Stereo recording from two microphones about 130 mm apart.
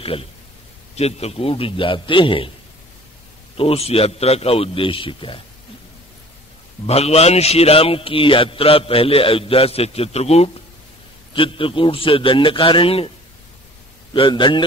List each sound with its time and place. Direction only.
0.0 s a man's voice: 45° left (ahead or behind)
3.5 s a man's voice: 50° left (ahead or behind)
6.9 s a man's voice: 50° left (ahead or behind)
11.3 s a man's voice: 40° left (ahead or behind)
14.1 s a man's voice: 40° left (ahead or behind)